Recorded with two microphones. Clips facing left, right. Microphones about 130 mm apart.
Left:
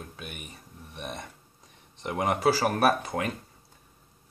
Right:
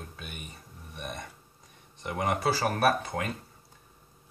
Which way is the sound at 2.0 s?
20° left (ahead or behind).